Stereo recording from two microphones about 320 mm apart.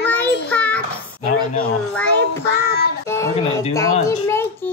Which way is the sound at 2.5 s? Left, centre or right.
Left.